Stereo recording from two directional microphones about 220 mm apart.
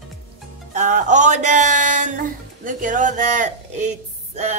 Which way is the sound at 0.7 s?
35° right (ahead or behind).